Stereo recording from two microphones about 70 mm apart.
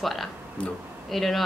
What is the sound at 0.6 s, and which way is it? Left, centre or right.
Speech, centre.